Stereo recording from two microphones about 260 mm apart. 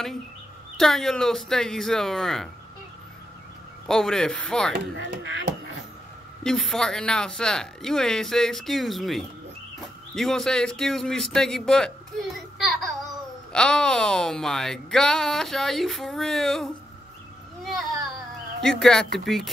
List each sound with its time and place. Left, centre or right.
0.7 s speech: centre
3.8 s speech: centre
4.7 s speech: right
6.4 s speech: centre
17.6 s baby cry: centre
18.6 s speech: centre